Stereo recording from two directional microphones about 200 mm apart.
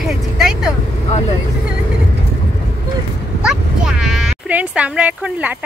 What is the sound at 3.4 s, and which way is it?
Speech, centre (ahead or behind).